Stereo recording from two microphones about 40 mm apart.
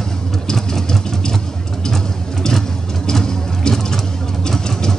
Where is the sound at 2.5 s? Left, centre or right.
Centre.